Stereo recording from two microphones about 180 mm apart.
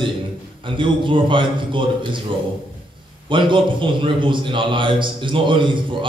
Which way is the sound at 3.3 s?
25° right (ahead or behind).